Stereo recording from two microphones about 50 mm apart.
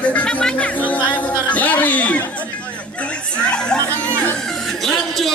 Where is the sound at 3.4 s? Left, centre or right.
Left.